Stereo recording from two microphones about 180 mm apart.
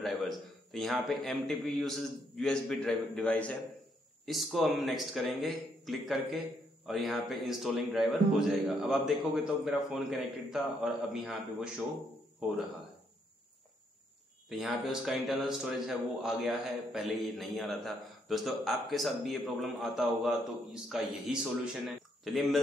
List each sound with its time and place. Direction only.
0.0 s a man's voice: centre (ahead or behind)
14.5 s a man's voice: centre (ahead or behind)